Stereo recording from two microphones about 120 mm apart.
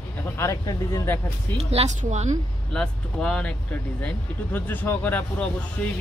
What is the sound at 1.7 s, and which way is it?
Speech, 65° right (ahead or behind).